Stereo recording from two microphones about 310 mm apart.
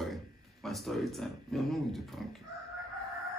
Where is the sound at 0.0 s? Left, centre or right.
Centre.